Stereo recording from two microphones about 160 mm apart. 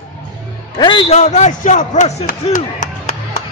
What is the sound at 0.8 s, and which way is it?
Speech, 30° left (ahead or behind).